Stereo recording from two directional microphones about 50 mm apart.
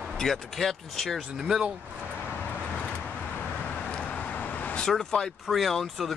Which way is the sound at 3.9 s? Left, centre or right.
Left.